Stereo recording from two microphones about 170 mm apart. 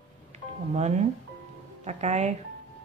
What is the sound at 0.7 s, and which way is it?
A woman's voice, 40° right (ahead or behind).